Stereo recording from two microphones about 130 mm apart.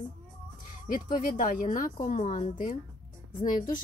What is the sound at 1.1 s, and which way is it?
Speech, 90° left.